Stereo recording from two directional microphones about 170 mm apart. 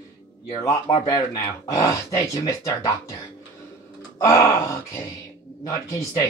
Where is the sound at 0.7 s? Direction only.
25° left (ahead or behind).